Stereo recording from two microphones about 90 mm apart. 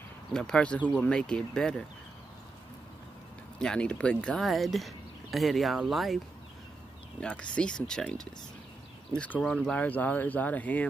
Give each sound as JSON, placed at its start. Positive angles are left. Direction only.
{"t": 0.3, "sound": "speech", "side_deg": 5}
{"t": 3.5, "sound": "speech", "side_deg": 10}
{"t": 7.2, "sound": "speech", "side_deg": 10}